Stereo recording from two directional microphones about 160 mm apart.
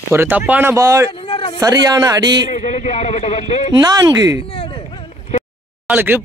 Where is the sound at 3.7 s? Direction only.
25° right (ahead or behind).